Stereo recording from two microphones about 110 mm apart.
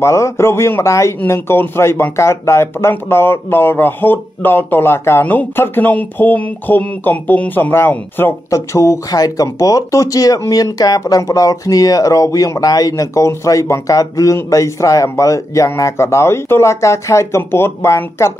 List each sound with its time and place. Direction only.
0.0 s speech: 25° left (ahead or behind)